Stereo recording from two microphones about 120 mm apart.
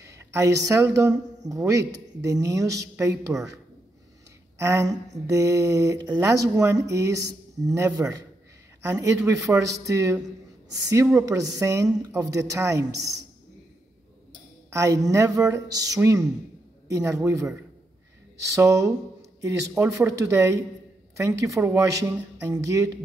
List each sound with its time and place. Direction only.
0.0 s a woman's voice: 25° right (ahead or behind)
4.6 s a woman's voice: 25° right (ahead or behind)
11.1 s a woman's voice: 30° right (ahead or behind)
14.7 s a woman's voice: 25° right (ahead or behind)
18.5 s a woman's voice: 25° right (ahead or behind)